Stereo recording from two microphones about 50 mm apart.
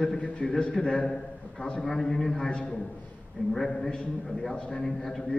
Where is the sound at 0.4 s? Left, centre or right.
Centre.